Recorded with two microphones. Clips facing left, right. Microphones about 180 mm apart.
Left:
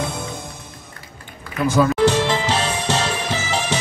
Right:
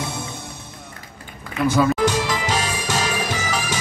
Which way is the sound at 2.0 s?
30° left (ahead or behind).